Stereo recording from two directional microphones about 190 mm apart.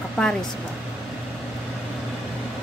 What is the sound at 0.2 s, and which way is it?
Music, 5° left (ahead or behind).